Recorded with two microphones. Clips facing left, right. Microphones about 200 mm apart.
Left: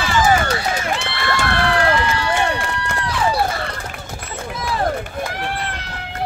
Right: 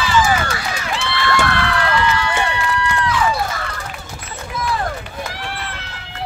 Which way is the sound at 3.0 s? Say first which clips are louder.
Left 3 dB; 35° left (ahead or behind).